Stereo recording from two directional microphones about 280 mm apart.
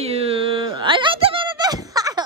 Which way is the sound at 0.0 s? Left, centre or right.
Right.